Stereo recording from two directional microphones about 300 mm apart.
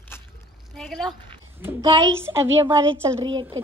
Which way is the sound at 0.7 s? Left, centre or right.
Centre.